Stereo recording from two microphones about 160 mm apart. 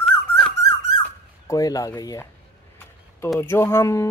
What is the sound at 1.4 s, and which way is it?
Speech, 20° left (ahead or behind).